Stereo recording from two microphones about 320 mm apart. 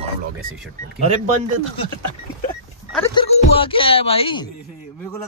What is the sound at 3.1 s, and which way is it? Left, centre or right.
Speech, centre.